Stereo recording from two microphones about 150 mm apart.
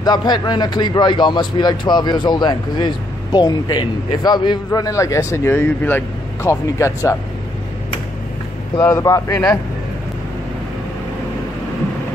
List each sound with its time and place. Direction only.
0.0 s a man's voice: 25° left (ahead or behind)
8.8 s a man's voice: 20° left (ahead or behind)